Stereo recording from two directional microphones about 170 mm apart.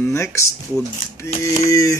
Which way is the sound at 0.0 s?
15° left (ahead or behind).